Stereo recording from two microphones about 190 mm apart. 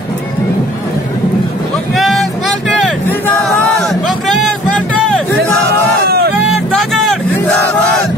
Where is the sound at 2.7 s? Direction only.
5° left (ahead or behind).